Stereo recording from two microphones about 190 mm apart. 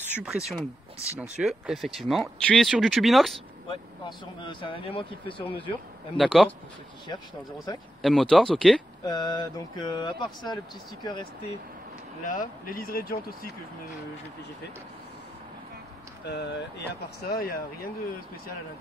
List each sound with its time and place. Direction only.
0.2 s speech: 5° right (ahead or behind)
3.6 s speech: 25° left (ahead or behind)
6.1 s speech: centre (ahead or behind)
8.0 s speech: centre (ahead or behind)
9.0 s speech: 20° left (ahead or behind)
12.3 s speech: 45° left (ahead or behind)
16.3 s speech: 65° left (ahead or behind)
17.3 s speech: 50° left (ahead or behind)